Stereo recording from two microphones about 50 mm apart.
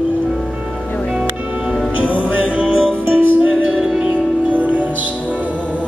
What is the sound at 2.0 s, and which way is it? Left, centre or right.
Music, right.